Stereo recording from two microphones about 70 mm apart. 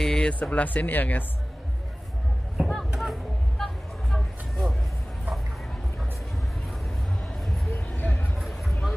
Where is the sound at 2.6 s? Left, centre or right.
Centre.